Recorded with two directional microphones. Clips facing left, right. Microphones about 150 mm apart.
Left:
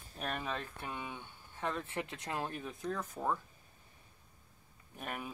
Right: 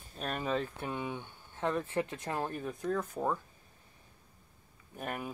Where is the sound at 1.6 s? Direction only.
15° right (ahead or behind).